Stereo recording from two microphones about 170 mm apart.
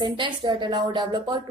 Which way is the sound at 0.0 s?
30° right (ahead or behind).